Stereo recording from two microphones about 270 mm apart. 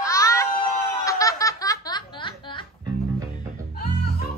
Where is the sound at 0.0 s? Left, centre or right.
Centre.